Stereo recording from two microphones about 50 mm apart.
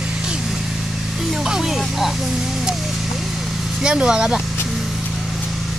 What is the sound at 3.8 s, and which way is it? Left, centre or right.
Speech, centre.